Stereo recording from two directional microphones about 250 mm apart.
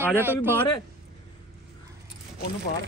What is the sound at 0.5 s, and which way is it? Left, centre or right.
Speech, centre.